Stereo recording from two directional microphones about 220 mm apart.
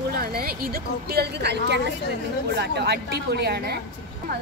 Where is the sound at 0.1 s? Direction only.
45° right (ahead or behind).